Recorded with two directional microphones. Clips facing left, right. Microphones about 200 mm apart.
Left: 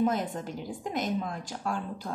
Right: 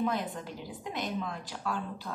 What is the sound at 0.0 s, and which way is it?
A woman's voice, 45° left (ahead or behind).